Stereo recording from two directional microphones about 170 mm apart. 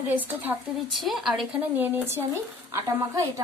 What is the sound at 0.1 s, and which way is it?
Speech, 10° right (ahead or behind).